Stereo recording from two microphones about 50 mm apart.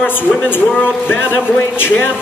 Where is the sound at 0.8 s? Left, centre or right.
Left.